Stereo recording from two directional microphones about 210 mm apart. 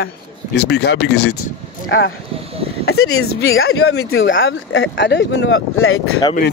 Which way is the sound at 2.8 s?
85° left.